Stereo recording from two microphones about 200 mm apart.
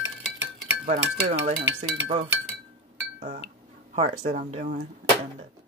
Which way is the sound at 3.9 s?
40° right (ahead or behind).